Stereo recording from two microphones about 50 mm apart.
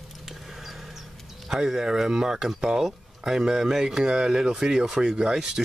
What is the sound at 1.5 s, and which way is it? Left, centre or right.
Speech, centre.